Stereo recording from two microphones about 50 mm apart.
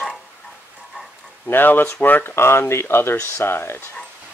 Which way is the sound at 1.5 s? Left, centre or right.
Left.